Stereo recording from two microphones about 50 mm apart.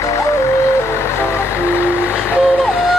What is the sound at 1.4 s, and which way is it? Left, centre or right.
Vehicle, left.